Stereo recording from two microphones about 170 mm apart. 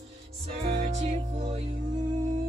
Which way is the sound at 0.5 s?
40° right (ahead or behind).